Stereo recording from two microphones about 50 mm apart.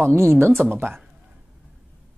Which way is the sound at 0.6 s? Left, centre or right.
Right.